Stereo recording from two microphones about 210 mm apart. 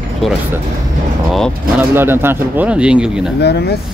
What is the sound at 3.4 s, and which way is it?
Speech, 50° left (ahead or behind).